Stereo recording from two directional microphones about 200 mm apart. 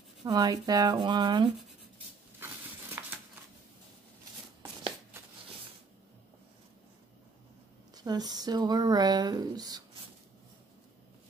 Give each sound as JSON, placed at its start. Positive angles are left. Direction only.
{"t": 0.2, "sound": "speech", "side_deg": -20}
{"t": 3.0, "sound": "a sound", "side_deg": -10}
{"t": 7.9, "sound": "speech", "side_deg": -20}